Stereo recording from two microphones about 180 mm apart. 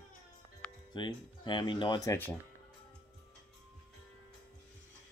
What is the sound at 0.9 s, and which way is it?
Speech, 25° left (ahead or behind).